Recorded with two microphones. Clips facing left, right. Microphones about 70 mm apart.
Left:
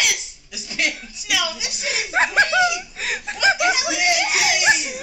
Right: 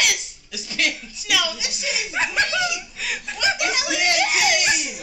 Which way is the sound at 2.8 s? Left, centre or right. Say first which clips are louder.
Left 2 dB; left.